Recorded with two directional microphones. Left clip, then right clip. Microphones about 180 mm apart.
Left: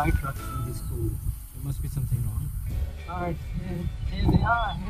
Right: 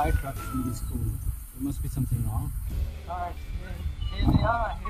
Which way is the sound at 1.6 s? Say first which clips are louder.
Right 6 dB; 15° right (ahead or behind).